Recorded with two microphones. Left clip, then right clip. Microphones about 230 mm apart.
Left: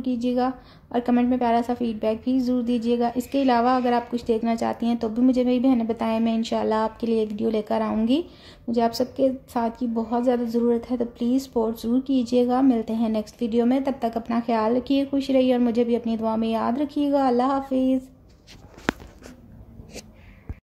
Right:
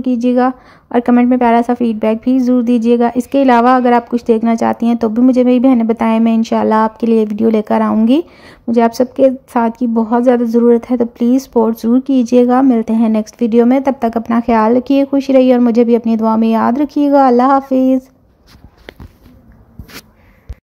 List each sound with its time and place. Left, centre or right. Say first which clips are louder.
0.0 s a woman's voice: right 11 dB; right